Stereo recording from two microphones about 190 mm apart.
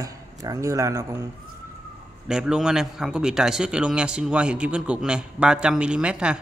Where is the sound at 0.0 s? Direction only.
15° right (ahead or behind).